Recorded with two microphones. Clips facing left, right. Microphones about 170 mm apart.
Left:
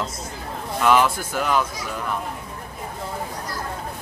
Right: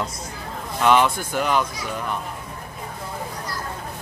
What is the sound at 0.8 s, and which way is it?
Speech, 5° left (ahead or behind).